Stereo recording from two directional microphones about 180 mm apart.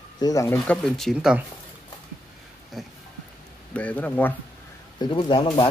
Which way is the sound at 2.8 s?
Centre (ahead or behind).